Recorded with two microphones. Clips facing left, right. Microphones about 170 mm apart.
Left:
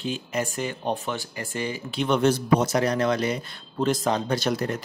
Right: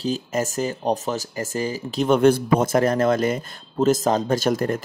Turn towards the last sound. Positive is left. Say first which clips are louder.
# right 4 dB
turn(degrees=-50)  # may be behind; listen again after turning